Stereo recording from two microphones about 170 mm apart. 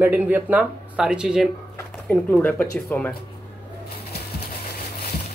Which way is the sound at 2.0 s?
5° left (ahead or behind).